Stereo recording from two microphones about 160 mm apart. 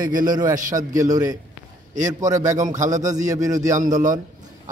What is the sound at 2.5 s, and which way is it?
Speech, 50° right (ahead or behind).